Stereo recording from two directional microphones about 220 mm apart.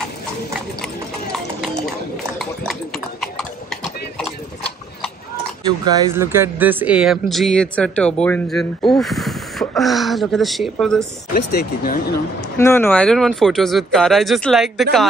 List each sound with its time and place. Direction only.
2.3 s clip-clop: centre (ahead or behind)
5.7 s speech: 15° right (ahead or behind); by 11.1 s centre (ahead or behind)
11.3 s speech: 40° left (ahead or behind)
12.5 s speech: 10° left (ahead or behind)